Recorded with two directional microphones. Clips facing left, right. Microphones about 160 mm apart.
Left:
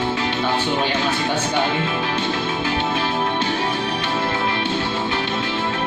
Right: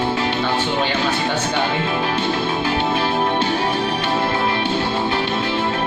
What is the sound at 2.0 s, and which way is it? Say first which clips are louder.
Music: right 2 dB; 35° right (ahead or behind).